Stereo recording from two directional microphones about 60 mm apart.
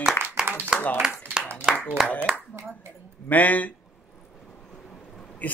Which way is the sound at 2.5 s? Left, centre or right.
Right.